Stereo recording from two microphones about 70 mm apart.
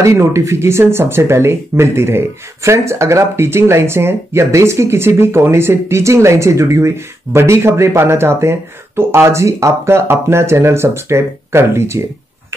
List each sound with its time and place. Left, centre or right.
0.0 s speech: right